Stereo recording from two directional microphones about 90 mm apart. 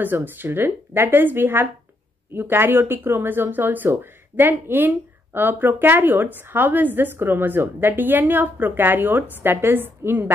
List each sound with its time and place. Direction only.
0.0 s speech: 20° right (ahead or behind)